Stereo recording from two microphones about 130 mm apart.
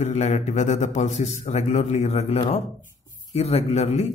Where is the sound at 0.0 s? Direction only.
60° left (ahead or behind).